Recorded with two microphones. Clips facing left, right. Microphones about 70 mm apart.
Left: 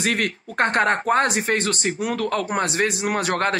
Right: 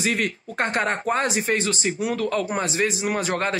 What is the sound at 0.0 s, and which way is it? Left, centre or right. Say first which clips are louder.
Speech: left 1 dB; left.